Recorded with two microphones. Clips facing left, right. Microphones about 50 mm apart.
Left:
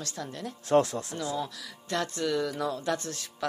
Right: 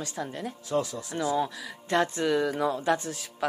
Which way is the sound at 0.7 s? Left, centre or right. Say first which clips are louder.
Left 5 dB; left.